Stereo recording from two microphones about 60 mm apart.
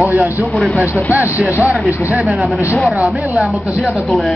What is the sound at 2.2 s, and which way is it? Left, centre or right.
Speech, centre.